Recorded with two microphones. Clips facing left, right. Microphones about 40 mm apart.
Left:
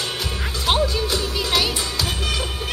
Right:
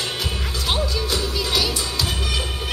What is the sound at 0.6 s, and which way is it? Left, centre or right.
Music, centre.